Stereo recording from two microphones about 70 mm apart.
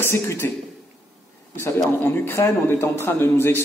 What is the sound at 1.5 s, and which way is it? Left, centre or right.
A man's voice, left.